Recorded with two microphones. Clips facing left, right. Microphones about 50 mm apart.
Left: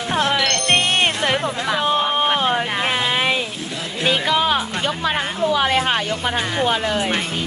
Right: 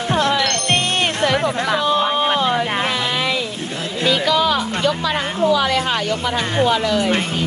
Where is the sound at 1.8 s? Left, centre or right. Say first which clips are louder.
Even; left.